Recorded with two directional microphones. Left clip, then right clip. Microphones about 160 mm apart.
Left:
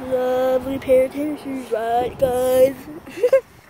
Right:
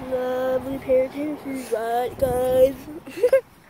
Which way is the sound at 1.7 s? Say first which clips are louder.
Left 3 dB; 10° right (ahead or behind).